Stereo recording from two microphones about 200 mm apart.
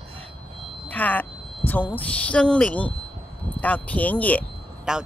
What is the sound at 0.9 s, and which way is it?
Speech, 10° left (ahead or behind).